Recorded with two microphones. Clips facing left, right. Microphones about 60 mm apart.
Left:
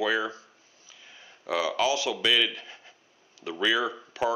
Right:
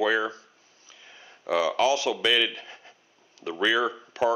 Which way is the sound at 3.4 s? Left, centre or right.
Right.